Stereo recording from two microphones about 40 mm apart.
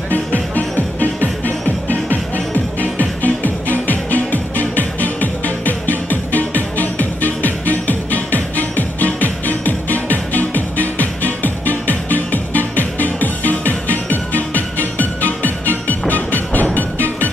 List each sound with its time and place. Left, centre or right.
0.1 s music: left